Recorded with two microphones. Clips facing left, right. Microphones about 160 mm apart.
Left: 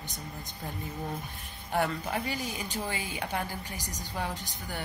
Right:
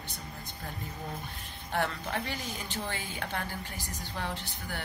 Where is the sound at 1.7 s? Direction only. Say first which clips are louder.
Left 2 dB; 10° left (ahead or behind).